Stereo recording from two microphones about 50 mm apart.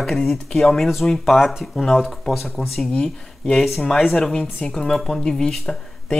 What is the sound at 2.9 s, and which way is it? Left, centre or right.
Speech, centre.